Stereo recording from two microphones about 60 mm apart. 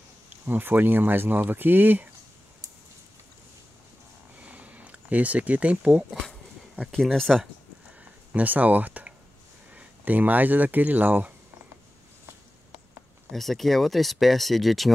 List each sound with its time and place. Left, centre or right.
0.5 s speech: right
4.4 s a sound: right
5.9 s speech: centre
6.9 s speech: centre
8.3 s speech: right
13.3 s speech: centre